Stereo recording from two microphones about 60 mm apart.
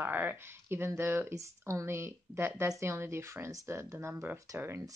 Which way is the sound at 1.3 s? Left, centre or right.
Right.